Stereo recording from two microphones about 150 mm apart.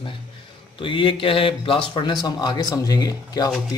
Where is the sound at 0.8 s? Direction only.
35° left (ahead or behind).